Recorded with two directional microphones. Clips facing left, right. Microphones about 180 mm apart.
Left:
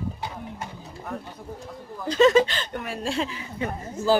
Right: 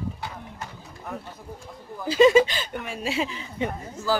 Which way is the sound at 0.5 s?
25° left (ahead or behind).